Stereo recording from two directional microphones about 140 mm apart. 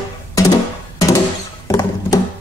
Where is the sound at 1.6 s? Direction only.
25° left (ahead or behind).